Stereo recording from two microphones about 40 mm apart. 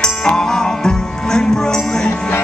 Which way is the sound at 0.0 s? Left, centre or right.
Centre.